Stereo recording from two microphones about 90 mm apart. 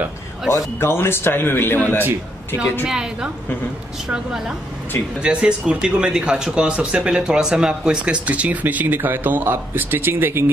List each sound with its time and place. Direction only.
0.7 s a man's voice: 25° left (ahead or behind)
2.9 s speech: 5° right (ahead or behind); by 10.4 s 25° right (ahead or behind)